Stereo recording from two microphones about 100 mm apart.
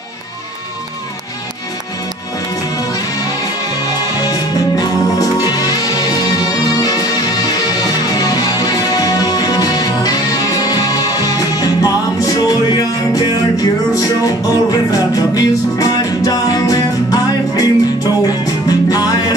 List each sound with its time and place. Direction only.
3.8 s music: 40° left (ahead or behind)